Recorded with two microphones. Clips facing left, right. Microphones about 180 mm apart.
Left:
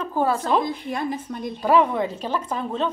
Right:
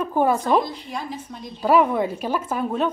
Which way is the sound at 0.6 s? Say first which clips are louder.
Left 5 dB; 55° left (ahead or behind).